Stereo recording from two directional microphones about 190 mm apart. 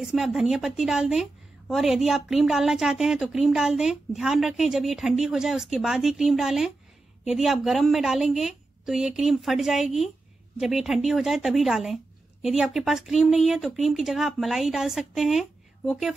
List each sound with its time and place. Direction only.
0.0 s a woman's voice: centre (ahead or behind)